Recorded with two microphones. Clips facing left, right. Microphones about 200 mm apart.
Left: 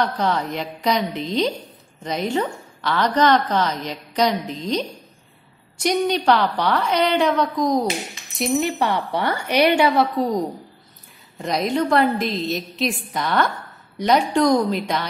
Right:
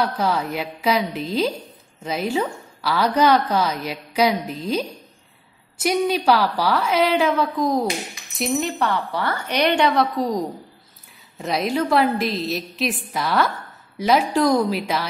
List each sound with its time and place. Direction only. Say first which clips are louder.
0.0 s a woman's voice: even; 5° right (ahead or behind)